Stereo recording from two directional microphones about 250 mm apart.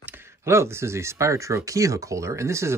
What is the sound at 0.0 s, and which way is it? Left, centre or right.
Speech, centre.